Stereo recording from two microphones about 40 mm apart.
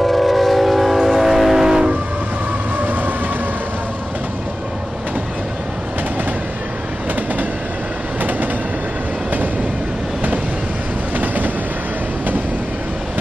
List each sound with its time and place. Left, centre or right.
0.0 s vehicle: centre
1.7 s train: centre
2.8 s train: right
8.2 s train: right
11.1 s train: right